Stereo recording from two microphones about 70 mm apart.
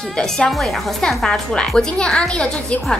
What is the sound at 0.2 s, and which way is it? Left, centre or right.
A woman's voice, centre.